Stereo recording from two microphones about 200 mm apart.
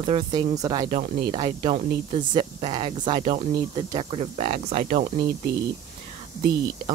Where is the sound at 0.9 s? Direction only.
35° right (ahead or behind).